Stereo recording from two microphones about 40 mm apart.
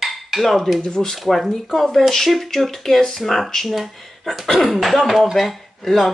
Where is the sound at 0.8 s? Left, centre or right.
Centre.